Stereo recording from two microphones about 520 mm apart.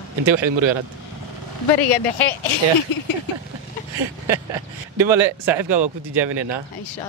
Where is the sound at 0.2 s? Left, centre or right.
Right.